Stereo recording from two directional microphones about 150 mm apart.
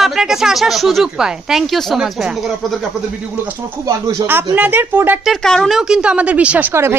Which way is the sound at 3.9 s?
20° right (ahead or behind).